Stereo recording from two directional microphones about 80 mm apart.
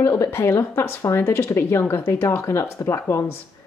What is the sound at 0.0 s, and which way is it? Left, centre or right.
Speech, left.